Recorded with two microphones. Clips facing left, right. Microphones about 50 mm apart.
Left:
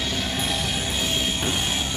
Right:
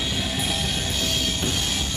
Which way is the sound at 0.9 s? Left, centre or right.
Centre.